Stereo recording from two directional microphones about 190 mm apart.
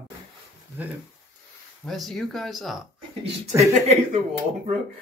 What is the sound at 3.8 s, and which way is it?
Speech, 40° right (ahead or behind).